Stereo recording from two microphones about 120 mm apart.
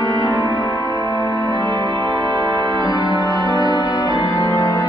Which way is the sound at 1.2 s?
40° right (ahead or behind).